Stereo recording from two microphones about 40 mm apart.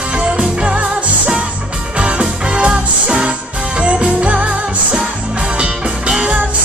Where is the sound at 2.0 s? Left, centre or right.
Right.